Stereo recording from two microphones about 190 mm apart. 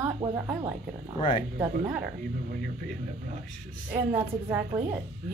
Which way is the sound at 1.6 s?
10° right (ahead or behind).